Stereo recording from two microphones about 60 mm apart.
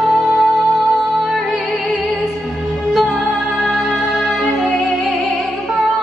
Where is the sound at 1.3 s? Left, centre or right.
Centre.